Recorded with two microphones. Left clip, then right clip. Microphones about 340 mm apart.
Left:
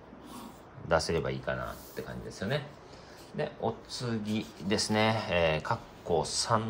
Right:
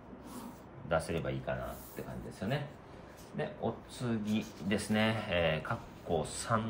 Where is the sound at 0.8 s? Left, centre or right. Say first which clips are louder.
Left 5 dB; left.